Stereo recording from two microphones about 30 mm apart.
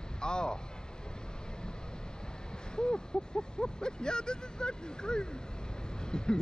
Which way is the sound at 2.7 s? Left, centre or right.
Left.